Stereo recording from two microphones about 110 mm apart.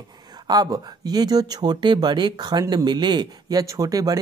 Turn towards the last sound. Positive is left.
turn(degrees=-35)  # may be behind; listen again after turning